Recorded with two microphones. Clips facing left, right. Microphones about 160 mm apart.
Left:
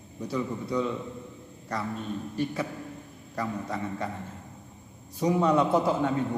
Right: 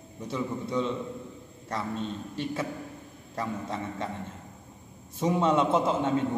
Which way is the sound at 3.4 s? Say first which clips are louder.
Left 1 dB; 25° right (ahead or behind).